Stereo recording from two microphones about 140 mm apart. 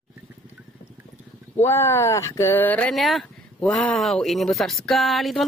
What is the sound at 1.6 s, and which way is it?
Speech, 15° left (ahead or behind).